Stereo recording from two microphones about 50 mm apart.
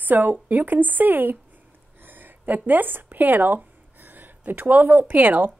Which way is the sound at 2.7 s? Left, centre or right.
Right.